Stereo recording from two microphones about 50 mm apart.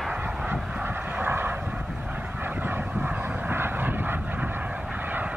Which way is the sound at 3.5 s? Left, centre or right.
Right.